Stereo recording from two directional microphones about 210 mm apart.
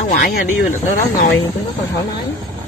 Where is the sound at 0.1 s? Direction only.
40° left (ahead or behind).